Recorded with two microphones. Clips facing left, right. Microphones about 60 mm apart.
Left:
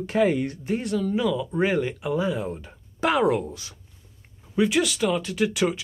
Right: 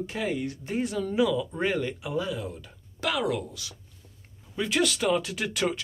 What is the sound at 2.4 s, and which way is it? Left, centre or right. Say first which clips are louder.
Speech: left 5 dB; left.